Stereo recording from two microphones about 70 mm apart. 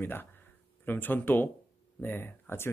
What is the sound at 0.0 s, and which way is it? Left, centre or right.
Speech, left.